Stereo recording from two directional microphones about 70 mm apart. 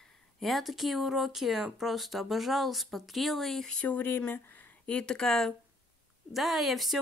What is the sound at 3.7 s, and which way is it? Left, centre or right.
Speech, centre.